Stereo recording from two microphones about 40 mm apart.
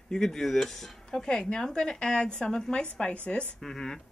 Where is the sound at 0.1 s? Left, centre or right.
Centre.